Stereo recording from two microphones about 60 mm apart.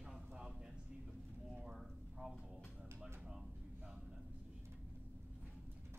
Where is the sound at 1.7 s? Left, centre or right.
Centre.